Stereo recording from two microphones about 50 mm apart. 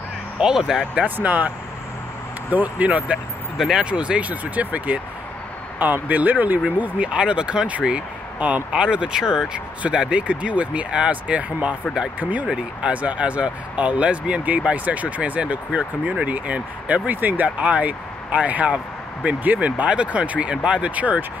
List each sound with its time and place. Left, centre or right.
0.4 s speech: centre
1.0 s speech: right
2.5 s speech: right
3.5 s speech: centre
3.8 s speech: right
6.0 s speech: right
6.8 s speech: right